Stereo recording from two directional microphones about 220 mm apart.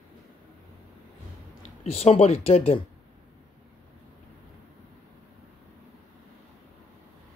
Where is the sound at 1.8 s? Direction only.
30° left (ahead or behind).